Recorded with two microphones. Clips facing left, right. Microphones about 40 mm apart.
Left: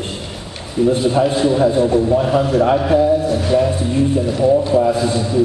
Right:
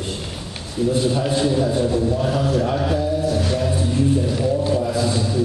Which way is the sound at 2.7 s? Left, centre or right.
Left.